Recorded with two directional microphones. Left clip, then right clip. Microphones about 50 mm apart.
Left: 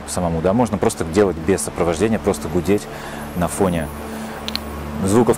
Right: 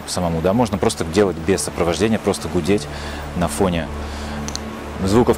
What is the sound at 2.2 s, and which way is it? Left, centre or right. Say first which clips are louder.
Speech: even; left.